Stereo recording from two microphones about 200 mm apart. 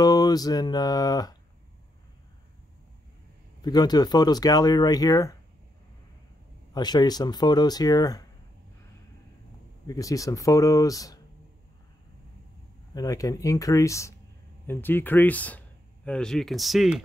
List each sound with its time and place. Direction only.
0.0 s a sound: 20° left (ahead or behind)
3.6 s speech: 20° left (ahead or behind)
6.7 s speech: 20° left (ahead or behind)
9.8 s speech: 15° left (ahead or behind)
12.9 s speech: 15° left (ahead or behind); by 17.0 s centre (ahead or behind)